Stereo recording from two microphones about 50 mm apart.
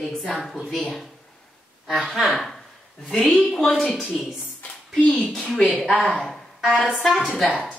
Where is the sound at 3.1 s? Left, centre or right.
Centre.